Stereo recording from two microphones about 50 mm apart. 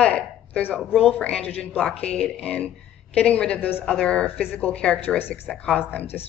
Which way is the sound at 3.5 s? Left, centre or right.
Left.